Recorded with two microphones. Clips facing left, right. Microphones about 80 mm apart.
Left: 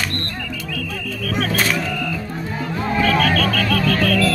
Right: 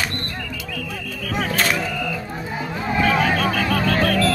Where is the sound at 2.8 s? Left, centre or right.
Centre; by 4.3 s right.